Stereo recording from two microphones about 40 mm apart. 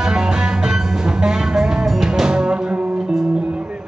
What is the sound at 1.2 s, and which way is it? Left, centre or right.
Music, centre.